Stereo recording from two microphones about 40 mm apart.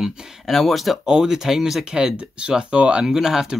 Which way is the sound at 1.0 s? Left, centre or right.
Centre.